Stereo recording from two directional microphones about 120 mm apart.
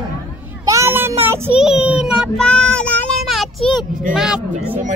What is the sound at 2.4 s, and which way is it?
Child singing, 5° left (ahead or behind).